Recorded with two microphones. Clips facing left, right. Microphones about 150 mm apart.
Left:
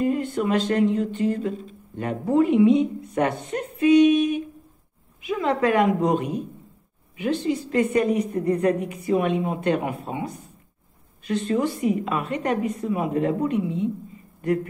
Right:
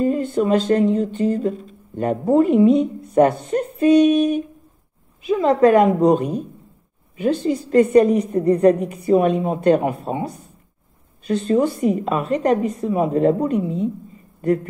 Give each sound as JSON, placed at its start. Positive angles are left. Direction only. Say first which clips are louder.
{"t": 0.0, "sound": "a woman's voice", "louder": "right 4 dB", "side_deg": -35}